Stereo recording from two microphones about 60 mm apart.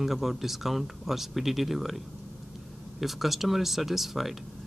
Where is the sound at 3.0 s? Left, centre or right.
Centre.